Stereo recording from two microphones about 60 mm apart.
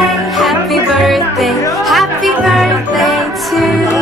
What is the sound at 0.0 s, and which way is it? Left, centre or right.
Music, centre.